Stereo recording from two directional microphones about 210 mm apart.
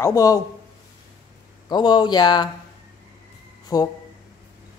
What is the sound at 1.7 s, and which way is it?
Speech, 20° left (ahead or behind).